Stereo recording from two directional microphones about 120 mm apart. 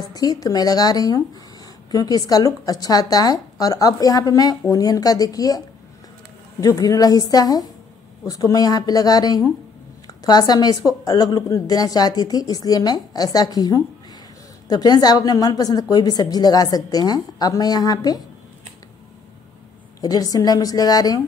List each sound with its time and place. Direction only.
0.1 s speech: 30° left (ahead or behind)
6.6 s speech: 30° left (ahead or behind)
20.0 s speech: 30° left (ahead or behind)